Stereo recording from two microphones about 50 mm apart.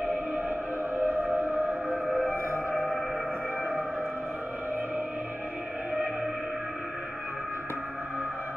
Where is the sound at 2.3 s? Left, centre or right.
Right.